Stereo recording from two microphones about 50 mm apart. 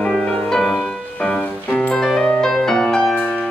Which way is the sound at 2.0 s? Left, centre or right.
Centre.